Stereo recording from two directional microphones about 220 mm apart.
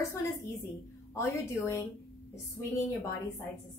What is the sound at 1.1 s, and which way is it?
Speech, 15° left (ahead or behind).